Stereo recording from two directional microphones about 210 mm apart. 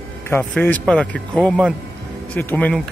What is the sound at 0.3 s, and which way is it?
A man's voice, 10° left (ahead or behind).